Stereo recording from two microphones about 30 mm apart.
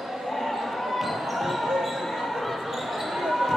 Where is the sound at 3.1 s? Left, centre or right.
Centre.